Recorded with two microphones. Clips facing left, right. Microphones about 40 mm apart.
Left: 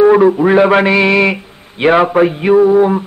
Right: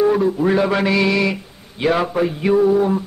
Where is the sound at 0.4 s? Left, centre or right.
Left.